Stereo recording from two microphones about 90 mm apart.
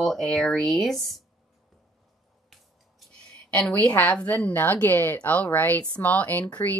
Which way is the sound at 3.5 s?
15° left (ahead or behind).